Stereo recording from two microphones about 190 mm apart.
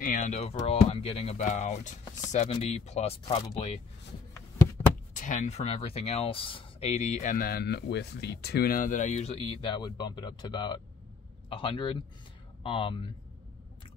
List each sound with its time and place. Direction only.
0.0 s speech: 45° left (ahead or behind)
5.1 s a man's voice: 40° left (ahead or behind); by 13.1 s 25° left (ahead or behind)